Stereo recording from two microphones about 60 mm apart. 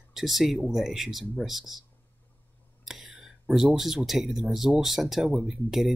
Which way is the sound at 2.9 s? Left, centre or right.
Centre.